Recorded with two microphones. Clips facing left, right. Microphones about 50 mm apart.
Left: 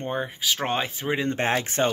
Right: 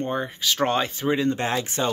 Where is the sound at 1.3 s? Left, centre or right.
Left.